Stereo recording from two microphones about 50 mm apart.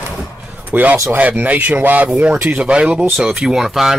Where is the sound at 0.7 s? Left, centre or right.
Right.